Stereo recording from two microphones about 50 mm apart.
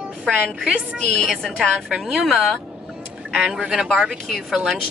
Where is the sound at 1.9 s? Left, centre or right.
Centre.